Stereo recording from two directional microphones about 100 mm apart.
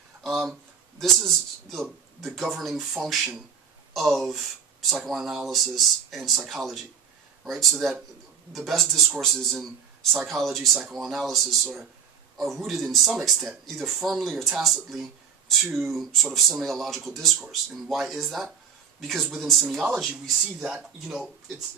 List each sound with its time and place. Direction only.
0.2 s a sound: centre (ahead or behind)
1.2 s speech: centre (ahead or behind)
20.6 s speech: 5° right (ahead or behind)